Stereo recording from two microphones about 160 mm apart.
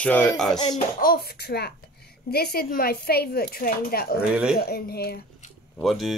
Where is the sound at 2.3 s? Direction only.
75° left (ahead or behind).